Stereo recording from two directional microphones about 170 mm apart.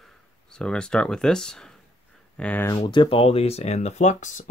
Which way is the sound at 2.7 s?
30° left (ahead or behind).